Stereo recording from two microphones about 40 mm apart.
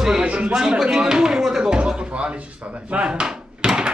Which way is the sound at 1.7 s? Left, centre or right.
Right.